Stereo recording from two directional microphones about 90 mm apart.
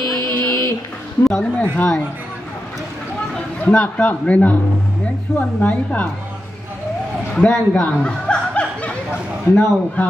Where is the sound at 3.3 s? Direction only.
15° left (ahead or behind).